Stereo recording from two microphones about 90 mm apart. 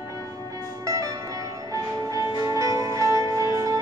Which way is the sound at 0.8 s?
40° right (ahead or behind).